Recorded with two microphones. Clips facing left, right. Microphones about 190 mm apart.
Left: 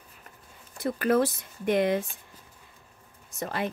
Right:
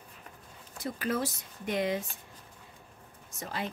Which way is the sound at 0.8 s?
60° left (ahead or behind).